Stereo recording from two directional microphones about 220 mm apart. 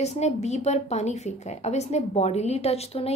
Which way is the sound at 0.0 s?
30° left (ahead or behind).